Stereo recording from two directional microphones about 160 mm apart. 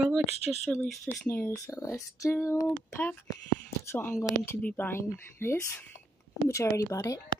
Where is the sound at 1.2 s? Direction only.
10° left (ahead or behind).